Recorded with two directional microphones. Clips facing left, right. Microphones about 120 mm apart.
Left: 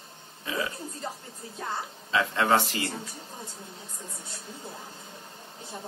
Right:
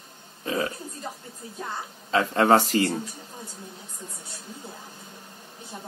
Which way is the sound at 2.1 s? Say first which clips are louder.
Right 5 dB; 40° right (ahead or behind).